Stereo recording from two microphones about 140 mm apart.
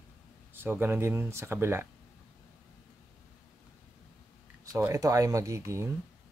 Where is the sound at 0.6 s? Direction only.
15° right (ahead or behind).